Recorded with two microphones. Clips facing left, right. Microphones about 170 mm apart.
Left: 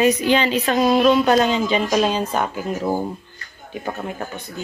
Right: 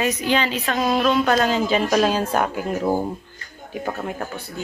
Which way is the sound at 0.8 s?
15° left (ahead or behind).